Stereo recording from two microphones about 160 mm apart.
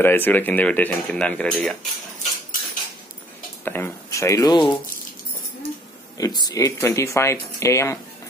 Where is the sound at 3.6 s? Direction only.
15° left (ahead or behind).